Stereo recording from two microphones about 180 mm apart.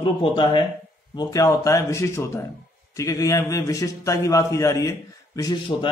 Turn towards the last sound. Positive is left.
turn(degrees=20)  # may be behind; listen again after turning